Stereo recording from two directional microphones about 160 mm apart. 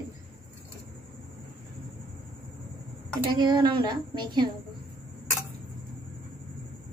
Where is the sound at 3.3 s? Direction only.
30° right (ahead or behind).